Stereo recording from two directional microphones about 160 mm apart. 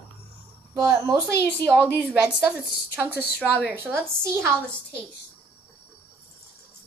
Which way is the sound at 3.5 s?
5° right (ahead or behind).